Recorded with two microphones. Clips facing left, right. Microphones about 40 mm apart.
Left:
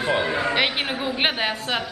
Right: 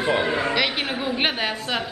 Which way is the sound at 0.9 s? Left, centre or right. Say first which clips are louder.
Right 1 dB; centre.